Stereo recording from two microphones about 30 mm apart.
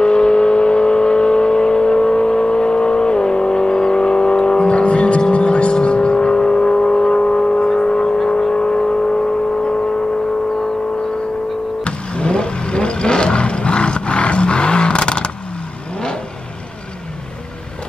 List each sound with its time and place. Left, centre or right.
0.0 s vehicle: left
11.8 s vehicle: left